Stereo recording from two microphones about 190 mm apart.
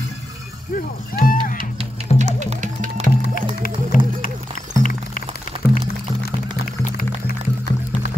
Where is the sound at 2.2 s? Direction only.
40° right (ahead or behind).